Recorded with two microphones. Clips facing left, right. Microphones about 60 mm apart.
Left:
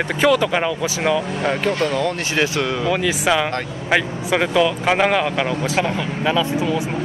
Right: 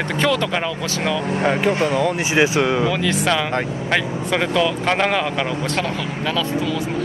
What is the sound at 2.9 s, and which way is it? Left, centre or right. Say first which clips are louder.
Speech: left 1 dB; centre.